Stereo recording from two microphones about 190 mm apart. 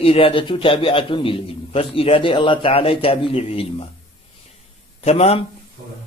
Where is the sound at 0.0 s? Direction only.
30° left (ahead or behind).